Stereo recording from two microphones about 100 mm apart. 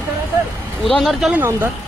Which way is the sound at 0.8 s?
Centre (ahead or behind).